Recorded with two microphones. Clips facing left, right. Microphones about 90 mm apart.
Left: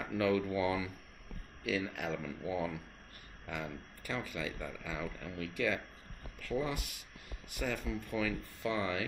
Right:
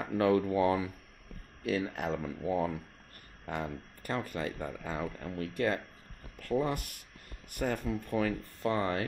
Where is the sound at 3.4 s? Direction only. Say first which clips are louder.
Right 5 dB; 45° right (ahead or behind).